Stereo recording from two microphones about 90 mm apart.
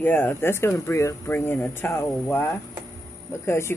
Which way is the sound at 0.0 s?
25° left (ahead or behind).